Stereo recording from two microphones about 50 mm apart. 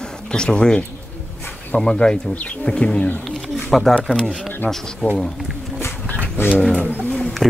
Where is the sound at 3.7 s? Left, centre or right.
Centre.